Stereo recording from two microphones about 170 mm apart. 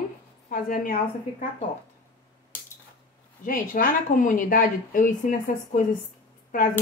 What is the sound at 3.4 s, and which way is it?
Speech, 55° left (ahead or behind).